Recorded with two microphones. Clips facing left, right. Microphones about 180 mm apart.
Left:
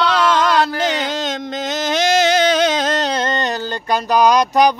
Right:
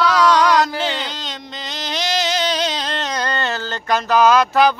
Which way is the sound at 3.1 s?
20° left (ahead or behind).